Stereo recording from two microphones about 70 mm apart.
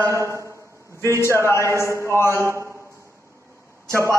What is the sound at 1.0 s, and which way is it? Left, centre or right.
A man's voice, left.